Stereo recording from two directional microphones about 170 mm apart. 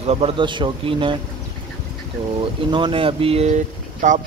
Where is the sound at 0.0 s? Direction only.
35° right (ahead or behind).